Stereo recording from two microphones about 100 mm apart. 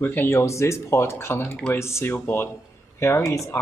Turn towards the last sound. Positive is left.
turn(degrees=30)  # may be behind; listen again after turning